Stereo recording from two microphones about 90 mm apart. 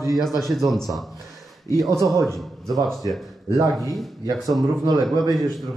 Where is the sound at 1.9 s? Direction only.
45° left (ahead or behind).